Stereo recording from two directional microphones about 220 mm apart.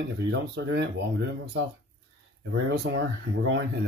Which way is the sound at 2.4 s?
55° right (ahead or behind).